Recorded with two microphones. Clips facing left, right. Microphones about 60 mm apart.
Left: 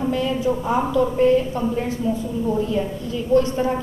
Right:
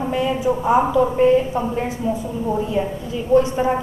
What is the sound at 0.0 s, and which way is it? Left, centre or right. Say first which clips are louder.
A woman's voice: right 1 dB; centre.